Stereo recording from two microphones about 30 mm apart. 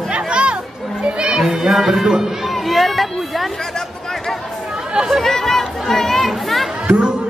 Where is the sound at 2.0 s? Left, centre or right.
Centre.